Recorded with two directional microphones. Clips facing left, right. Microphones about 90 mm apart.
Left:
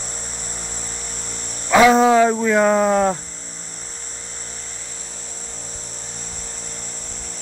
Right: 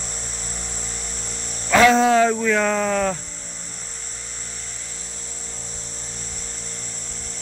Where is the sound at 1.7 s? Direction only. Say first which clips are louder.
Left 2 dB; 10° left (ahead or behind).